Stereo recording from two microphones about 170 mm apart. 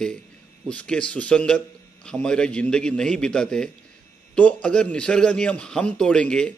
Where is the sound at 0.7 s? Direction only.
5° left (ahead or behind).